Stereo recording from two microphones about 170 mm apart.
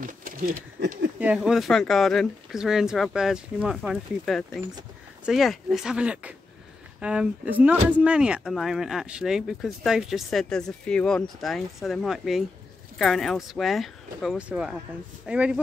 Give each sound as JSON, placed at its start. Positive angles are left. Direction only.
{"t": 0.0, "sound": "speech", "side_deg": -55}
{"t": 1.2, "sound": "speech", "side_deg": -5}